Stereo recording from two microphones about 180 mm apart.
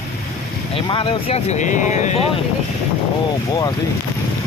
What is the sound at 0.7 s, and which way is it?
Speech, 30° left (ahead or behind).